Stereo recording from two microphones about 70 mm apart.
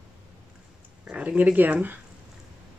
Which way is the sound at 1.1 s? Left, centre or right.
Right.